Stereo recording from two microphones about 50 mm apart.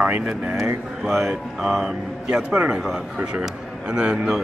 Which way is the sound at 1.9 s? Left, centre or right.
Right.